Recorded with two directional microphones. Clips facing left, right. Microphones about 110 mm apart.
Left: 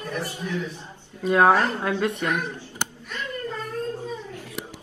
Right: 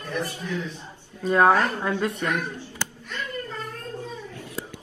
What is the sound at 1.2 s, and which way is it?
Speech, 5° left (ahead or behind).